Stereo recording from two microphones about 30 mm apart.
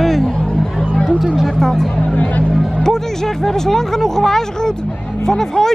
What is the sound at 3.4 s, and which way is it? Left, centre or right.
Speech, centre.